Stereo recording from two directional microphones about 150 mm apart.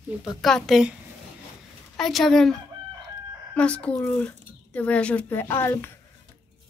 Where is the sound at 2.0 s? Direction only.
Centre (ahead or behind).